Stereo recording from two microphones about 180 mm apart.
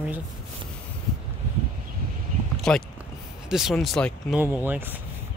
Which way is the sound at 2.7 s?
5° left (ahead or behind).